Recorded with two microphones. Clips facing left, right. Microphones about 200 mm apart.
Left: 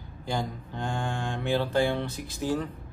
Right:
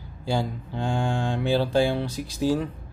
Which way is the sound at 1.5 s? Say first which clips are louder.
Right 3 dB; 10° right (ahead or behind).